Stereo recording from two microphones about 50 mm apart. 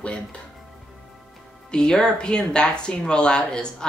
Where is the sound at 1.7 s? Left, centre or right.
Centre.